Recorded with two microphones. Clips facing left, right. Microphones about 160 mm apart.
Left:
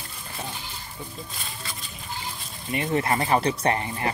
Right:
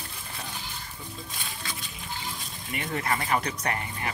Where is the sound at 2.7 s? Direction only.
30° left (ahead or behind).